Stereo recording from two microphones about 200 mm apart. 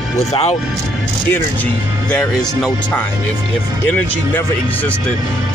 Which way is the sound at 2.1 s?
5° left (ahead or behind).